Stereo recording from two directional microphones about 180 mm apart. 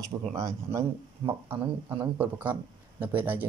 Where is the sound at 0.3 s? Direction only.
20° right (ahead or behind).